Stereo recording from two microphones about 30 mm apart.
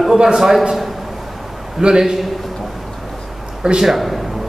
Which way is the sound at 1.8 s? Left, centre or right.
Right.